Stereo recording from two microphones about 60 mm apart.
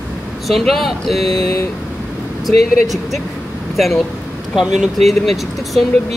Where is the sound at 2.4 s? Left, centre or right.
Centre.